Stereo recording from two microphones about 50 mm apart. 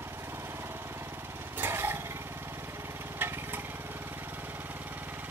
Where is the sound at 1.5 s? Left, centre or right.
Right.